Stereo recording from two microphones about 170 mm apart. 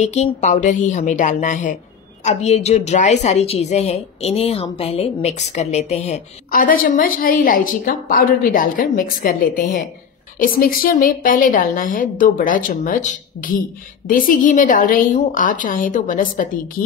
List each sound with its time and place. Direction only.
0.0 s speech: 40° left (ahead or behind)